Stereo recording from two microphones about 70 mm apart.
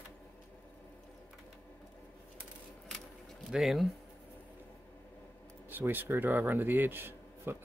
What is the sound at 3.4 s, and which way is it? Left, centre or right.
Speech, centre.